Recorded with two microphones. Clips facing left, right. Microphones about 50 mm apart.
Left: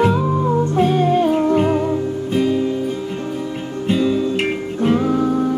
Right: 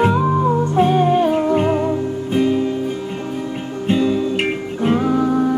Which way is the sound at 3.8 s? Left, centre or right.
Centre.